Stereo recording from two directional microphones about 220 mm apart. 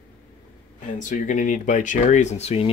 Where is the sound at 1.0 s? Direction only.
35° left (ahead or behind).